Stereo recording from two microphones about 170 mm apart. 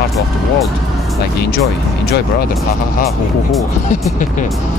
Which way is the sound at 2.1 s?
65° left (ahead or behind).